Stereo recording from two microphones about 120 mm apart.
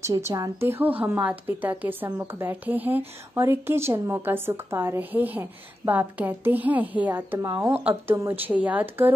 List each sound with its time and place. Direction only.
0.0 s a woman's voice: 25° right (ahead or behind)